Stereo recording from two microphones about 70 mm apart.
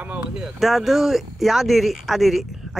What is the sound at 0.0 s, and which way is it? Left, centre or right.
Speech, centre.